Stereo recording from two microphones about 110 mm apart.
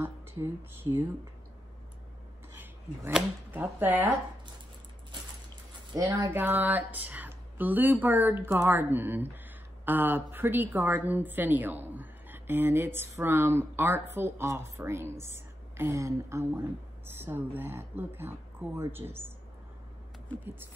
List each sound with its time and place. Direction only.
0.0 s speech: 20° right (ahead or behind)
2.5 s a sound: 15° right (ahead or behind)
3.5 s speech: 15° right (ahead or behind)
5.9 s a woman's voice: 30° right (ahead or behind)
6.3 s a woman's voice: 15° right (ahead or behind)